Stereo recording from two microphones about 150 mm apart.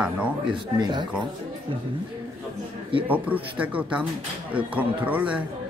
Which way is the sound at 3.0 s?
10° right (ahead or behind).